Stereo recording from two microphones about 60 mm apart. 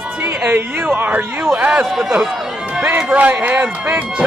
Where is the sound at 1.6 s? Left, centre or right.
Centre.